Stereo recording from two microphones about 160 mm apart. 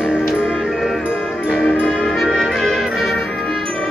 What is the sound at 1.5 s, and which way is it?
Music, centre (ahead or behind).